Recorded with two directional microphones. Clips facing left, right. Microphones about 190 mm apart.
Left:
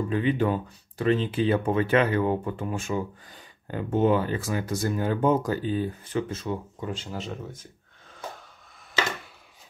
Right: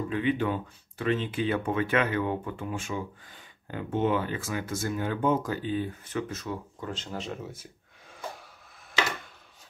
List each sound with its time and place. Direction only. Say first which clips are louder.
0.1 s speech: left 2 dB; 35° left (ahead or behind)
6.9 s speech: left 1 dB; 5° left (ahead or behind)